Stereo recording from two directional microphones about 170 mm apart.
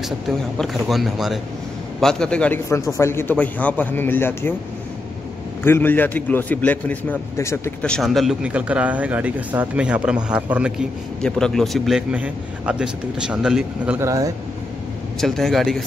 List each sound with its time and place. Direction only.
0.6 s a man's voice: centre (ahead or behind)
5.6 s a man's voice: 10° left (ahead or behind); by 10.9 s 5° right (ahead or behind)
11.1 s a man's voice: 5° left (ahead or behind)
13.9 s speech: 20° right (ahead or behind)
15.1 s a man's voice: centre (ahead or behind)